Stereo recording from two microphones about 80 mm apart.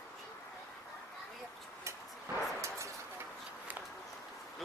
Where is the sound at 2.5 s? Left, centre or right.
Right.